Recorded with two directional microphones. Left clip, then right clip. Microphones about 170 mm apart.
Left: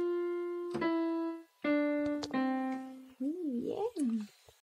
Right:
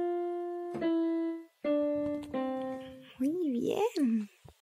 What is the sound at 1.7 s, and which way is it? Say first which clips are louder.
Keyboard: right 2 dB; 15° left (ahead or behind).